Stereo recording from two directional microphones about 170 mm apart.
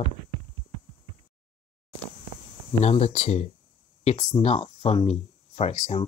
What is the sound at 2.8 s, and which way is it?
Speech, 40° left (ahead or behind).